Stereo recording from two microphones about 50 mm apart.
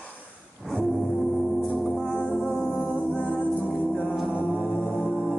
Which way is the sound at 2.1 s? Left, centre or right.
Left.